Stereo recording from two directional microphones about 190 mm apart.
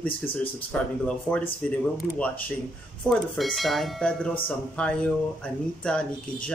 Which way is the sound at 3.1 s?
Centre (ahead or behind).